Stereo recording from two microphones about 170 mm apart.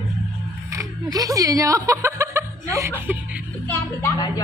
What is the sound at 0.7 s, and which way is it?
A man's voice, 20° right (ahead or behind).